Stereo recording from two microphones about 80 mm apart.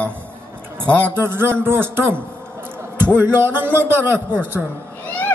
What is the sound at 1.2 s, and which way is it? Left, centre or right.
Speech, right.